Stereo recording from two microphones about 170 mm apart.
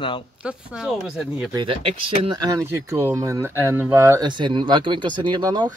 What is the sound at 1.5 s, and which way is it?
Speech, 30° right (ahead or behind).